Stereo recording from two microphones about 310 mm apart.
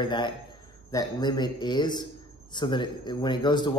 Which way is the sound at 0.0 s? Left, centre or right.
Centre.